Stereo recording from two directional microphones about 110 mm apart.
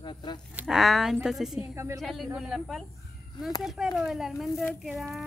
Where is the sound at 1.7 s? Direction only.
25° right (ahead or behind).